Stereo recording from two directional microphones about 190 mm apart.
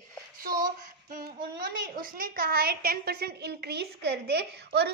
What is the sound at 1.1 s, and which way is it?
A woman's voice, 50° right (ahead or behind).